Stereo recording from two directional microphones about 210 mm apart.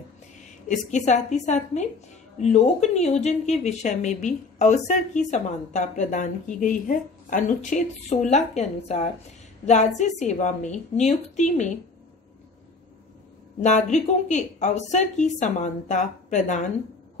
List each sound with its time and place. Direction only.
0.7 s a woman's voice: 35° left (ahead or behind)
13.6 s a woman's voice: 35° left (ahead or behind)